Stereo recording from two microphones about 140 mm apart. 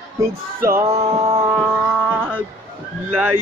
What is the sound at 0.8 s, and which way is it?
Music, 45° right (ahead or behind).